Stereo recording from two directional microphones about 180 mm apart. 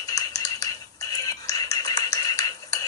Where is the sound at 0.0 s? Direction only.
20° left (ahead or behind).